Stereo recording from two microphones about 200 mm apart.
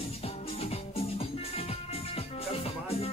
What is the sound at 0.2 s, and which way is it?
Music, 30° left (ahead or behind).